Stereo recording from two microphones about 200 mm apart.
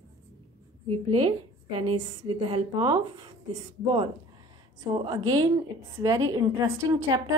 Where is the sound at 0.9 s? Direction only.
25° right (ahead or behind).